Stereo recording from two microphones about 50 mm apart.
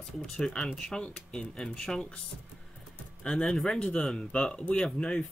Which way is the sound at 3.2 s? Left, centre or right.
Centre.